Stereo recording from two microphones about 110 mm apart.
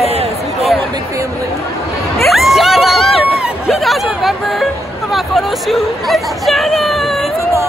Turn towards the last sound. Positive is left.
turn(degrees=0)  # may be behind; listen again after turning